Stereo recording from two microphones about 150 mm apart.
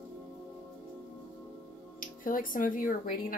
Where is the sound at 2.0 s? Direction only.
65° left (ahead or behind).